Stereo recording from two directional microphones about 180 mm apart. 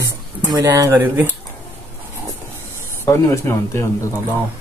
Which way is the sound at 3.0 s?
15° left (ahead or behind).